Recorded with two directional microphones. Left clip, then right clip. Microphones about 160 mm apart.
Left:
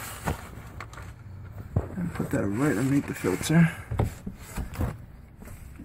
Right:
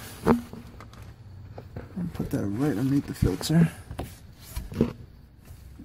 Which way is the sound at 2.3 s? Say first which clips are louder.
Left 2 dB; 25° right (ahead or behind).